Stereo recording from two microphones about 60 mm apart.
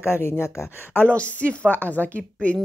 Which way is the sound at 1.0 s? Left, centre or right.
Left.